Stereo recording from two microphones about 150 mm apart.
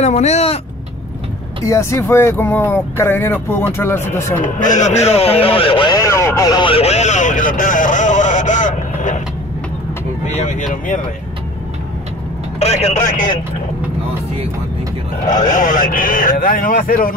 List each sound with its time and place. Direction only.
0.0 s speech: 50° left (ahead or behind)
1.7 s speech: 20° left (ahead or behind)
4.4 s speech: 55° left (ahead or behind); by 5.9 s 35° left (ahead or behind)
5.9 s speech: 20° left (ahead or behind); by 9.2 s 55° left (ahead or behind)
10.2 s speech: 50° left (ahead or behind)
12.5 s speech: 45° left (ahead or behind); by 13.4 s 60° left (ahead or behind)
15.2 s speech: 60° left (ahead or behind)